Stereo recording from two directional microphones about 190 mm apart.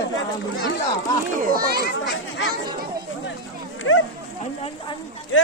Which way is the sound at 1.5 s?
50° right (ahead or behind).